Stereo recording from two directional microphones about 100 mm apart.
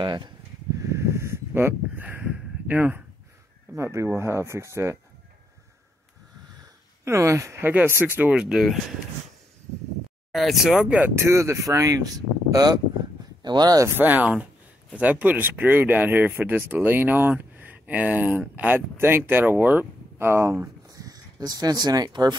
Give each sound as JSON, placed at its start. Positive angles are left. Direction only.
{"t": 0.0, "sound": "speech", "side_deg": -50}
{"t": 0.7, "sound": "a sound", "side_deg": -30}
{"t": 3.7, "sound": "speech", "side_deg": -30}
{"t": 7.1, "sound": "speech", "side_deg": -30}
{"t": 10.3, "sound": "speech", "side_deg": 0}
{"t": 11.1, "sound": "speech", "side_deg": -30}
{"t": 13.8, "sound": "speech", "side_deg": -20}